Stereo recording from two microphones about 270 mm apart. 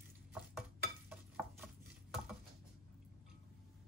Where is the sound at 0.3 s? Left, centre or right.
Centre.